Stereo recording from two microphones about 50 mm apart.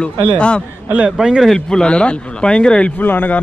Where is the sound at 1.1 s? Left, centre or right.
Centre.